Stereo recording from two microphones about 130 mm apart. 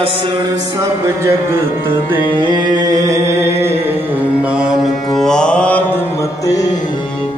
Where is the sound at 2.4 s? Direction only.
35° right (ahead or behind); by 4.9 s 5° right (ahead or behind).